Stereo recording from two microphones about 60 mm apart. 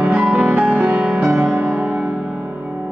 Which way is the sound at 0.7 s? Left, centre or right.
Right.